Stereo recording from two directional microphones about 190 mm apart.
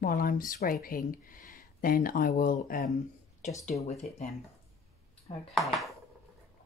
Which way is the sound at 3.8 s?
35° left (ahead or behind).